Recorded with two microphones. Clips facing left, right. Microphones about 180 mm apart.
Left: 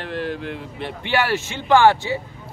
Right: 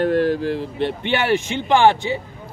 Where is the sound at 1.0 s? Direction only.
20° right (ahead or behind).